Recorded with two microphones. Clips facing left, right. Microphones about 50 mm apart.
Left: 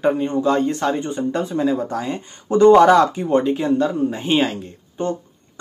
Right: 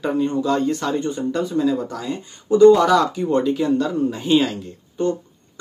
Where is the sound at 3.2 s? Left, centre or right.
Left.